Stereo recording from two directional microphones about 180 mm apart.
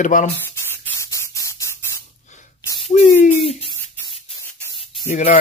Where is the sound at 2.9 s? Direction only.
45° left (ahead or behind).